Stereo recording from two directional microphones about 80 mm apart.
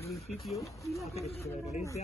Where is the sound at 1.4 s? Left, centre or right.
Left.